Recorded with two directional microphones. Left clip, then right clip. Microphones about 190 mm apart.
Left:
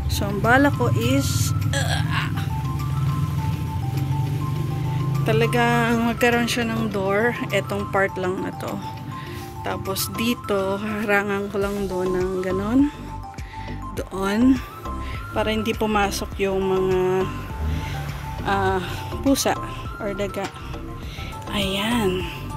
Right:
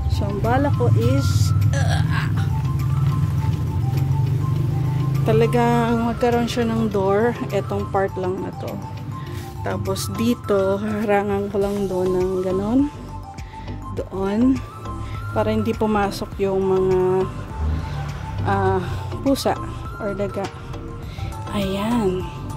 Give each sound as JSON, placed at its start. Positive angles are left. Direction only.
{"t": 0.1, "sound": "speech", "side_deg": 15}
{"t": 1.7, "sound": "speech", "side_deg": -10}
{"t": 5.2, "sound": "speech", "side_deg": -15}
{"t": 9.9, "sound": "speech", "side_deg": -15}
{"t": 13.9, "sound": "speech", "side_deg": -5}
{"t": 18.4, "sound": "speech", "side_deg": -10}